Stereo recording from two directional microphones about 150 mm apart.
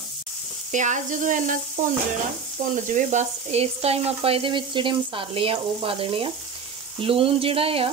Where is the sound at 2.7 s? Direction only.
55° right (ahead or behind).